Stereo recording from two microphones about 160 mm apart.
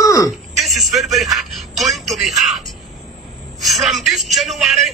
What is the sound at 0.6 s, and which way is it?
A woman's voice, centre (ahead or behind).